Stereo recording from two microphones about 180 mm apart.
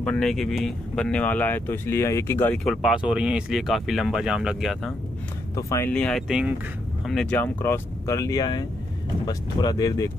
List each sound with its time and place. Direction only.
0.0 s speech: 5° left (ahead or behind)
5.6 s speech: 15° left (ahead or behind)